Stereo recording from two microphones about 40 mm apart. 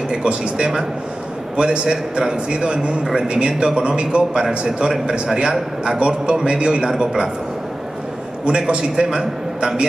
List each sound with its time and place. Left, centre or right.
0.1 s a man's voice: right
1.9 s a man's voice: centre
8.5 s a man's voice: right